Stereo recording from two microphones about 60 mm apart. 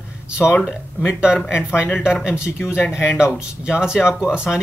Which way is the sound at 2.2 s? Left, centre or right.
Centre.